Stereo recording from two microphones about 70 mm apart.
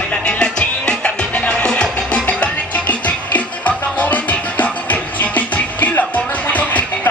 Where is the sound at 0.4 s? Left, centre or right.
Centre.